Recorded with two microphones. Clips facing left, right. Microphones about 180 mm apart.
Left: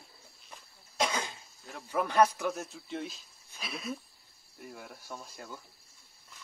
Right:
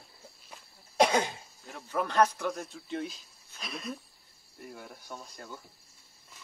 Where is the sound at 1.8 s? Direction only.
10° left (ahead or behind).